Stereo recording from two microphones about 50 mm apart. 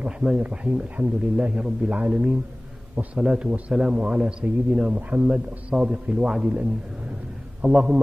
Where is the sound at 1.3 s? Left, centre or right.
Right.